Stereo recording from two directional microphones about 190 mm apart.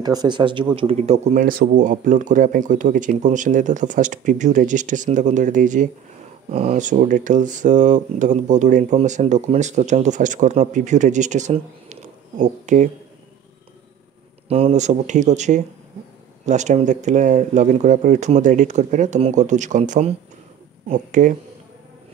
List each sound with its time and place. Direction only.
0.0 s speech: 20° right (ahead or behind); by 12.9 s 40° right (ahead or behind)
14.5 s speech: 35° right (ahead or behind)